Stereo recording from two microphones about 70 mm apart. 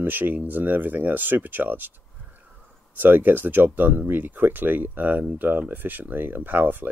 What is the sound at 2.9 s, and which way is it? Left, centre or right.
Speech, right.